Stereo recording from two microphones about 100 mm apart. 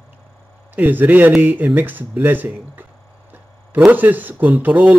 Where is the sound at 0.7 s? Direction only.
15° right (ahead or behind).